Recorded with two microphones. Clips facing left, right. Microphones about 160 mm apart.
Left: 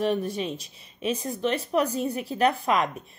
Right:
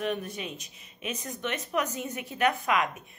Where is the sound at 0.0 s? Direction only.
30° left (ahead or behind).